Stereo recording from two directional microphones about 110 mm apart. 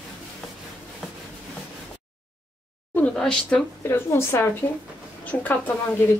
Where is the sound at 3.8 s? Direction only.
20° left (ahead or behind).